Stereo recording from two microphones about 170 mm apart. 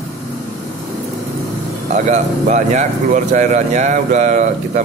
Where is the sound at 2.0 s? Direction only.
45° right (ahead or behind).